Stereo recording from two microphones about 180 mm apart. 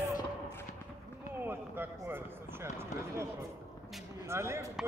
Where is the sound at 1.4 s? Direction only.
10° right (ahead or behind).